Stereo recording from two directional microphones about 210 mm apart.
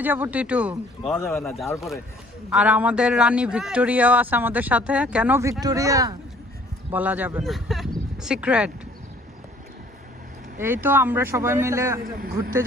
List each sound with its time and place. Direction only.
0.0 s a man's voice: 10° right (ahead or behind)
2.5 s a man's voice: 5° right (ahead or behind)
10.6 s a man's voice: 10° right (ahead or behind)
12.0 s a man's voice: 45° right (ahead or behind)